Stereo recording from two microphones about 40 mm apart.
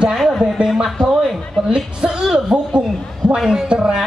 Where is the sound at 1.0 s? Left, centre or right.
Left.